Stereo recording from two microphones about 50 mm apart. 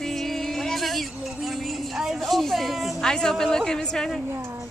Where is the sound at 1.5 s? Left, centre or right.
Centre.